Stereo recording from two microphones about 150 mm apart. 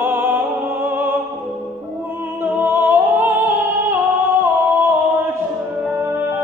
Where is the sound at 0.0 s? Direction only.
15° right (ahead or behind).